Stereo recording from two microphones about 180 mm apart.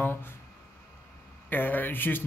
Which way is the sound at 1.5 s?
10° left (ahead or behind).